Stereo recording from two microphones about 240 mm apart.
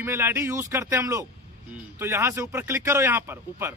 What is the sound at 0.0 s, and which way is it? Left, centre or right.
Speech, centre.